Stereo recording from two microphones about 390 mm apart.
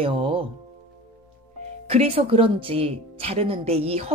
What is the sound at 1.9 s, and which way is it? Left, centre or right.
A woman's voice, centre.